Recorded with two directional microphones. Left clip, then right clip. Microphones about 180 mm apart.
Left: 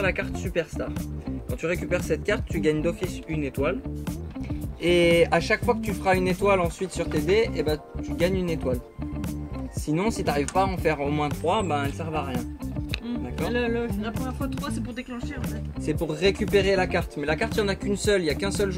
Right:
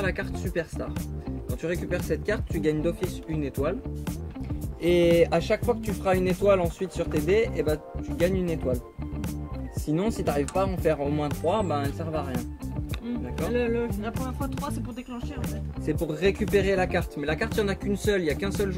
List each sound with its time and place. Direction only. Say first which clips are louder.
0.0 s speech: left 3 dB; 20° right (ahead or behind)
2.0 s speech: left 2 dB; 15° right (ahead or behind)
4.8 s speech: left 1 dB; 15° right (ahead or behind)
9.8 s speech: left 1 dB; 10° right (ahead or behind)
13.5 s music: even; 50° right (ahead or behind)
15.4 s speech: even; centre (ahead or behind)